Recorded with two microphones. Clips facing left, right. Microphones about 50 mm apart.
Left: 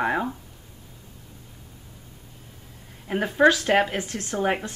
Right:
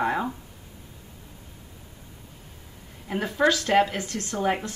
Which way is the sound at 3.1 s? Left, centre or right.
Left.